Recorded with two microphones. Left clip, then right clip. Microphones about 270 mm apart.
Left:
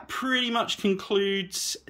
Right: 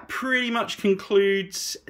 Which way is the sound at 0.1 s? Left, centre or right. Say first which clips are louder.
Right 2 dB; centre.